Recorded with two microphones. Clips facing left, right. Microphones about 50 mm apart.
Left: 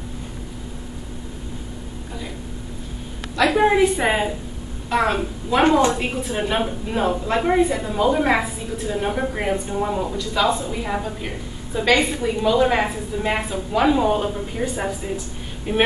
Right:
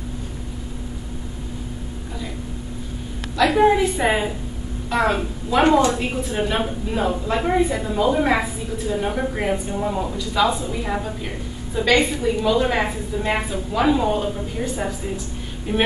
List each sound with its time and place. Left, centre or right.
3.4 s a woman's voice: centre
5.8 s a woman's voice: left
6.0 s a woman's voice: centre